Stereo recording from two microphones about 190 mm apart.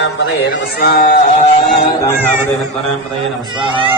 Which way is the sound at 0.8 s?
45° left (ahead or behind).